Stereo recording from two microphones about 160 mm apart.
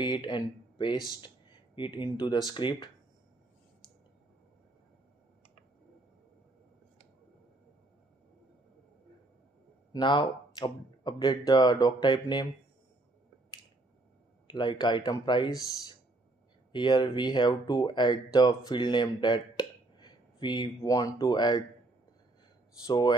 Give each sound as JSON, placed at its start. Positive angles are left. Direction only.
{"t": 0.0, "sound": "speech", "side_deg": 30}
{"t": 9.9, "sound": "speech", "side_deg": 30}
{"t": 14.5, "sound": "speech", "side_deg": 30}
{"t": 22.8, "sound": "speech", "side_deg": 25}